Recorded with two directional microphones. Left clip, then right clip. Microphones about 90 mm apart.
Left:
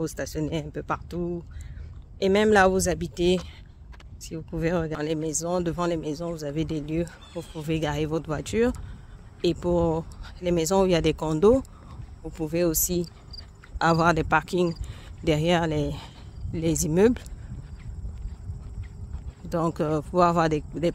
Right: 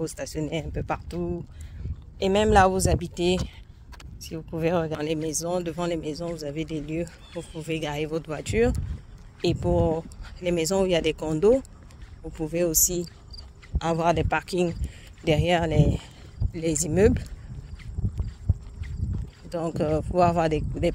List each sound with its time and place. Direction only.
0.0 s speech: 30° left (ahead or behind)
0.8 s speech: 20° left (ahead or behind)
2.1 s speech: 30° left (ahead or behind)
2.7 s speech: 60° left (ahead or behind)
3.0 s speech: 40° left (ahead or behind)
4.2 s speech: 30° left (ahead or behind)
6.8 s speech: 50° left (ahead or behind)
10.2 s speech: 25° left (ahead or behind)
10.8 s speech: 40° left (ahead or behind)
12.3 s speech: 55° left (ahead or behind)
12.5 s speech: 45° left (ahead or behind)
13.0 s cricket: 50° left (ahead or behind)
14.4 s speech: 30° left (ahead or behind)
19.7 s speech: 35° left (ahead or behind)